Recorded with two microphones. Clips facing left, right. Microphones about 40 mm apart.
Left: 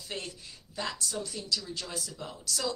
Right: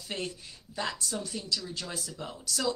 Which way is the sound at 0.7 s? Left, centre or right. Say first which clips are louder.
Right 1 dB; right.